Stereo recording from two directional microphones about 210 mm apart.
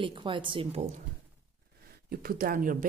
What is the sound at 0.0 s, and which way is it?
Speech, 25° right (ahead or behind).